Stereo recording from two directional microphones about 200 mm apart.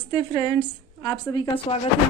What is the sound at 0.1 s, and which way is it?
A woman's voice, 15° left (ahead or behind).